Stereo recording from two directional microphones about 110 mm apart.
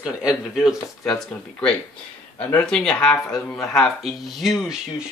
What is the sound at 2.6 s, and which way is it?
Speech, 5° left (ahead or behind).